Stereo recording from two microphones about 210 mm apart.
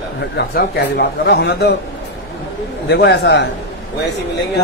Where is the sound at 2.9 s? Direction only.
50° left (ahead or behind).